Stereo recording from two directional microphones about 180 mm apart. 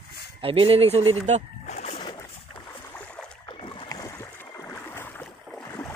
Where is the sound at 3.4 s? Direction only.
30° left (ahead or behind); by 5.3 s 10° left (ahead or behind).